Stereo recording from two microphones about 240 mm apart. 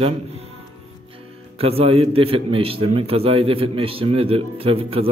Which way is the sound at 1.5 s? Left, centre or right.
Right.